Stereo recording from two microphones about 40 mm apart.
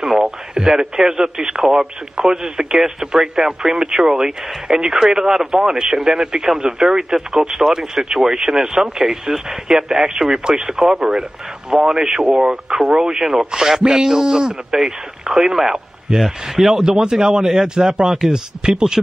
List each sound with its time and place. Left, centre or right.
0.0 s speech: centre